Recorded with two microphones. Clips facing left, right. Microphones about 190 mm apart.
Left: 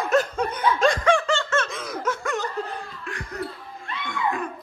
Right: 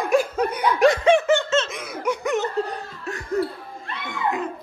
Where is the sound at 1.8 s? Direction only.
10° right (ahead or behind).